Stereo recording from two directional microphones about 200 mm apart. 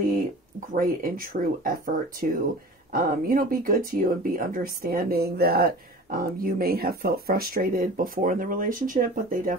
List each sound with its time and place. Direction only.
0.7 s speech: 45° right (ahead or behind)